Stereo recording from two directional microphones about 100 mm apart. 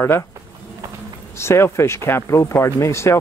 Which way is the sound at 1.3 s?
25° left (ahead or behind).